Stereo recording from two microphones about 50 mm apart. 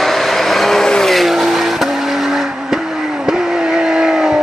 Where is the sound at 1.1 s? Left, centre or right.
Centre.